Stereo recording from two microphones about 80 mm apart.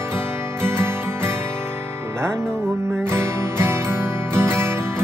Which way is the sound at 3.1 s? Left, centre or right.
Right.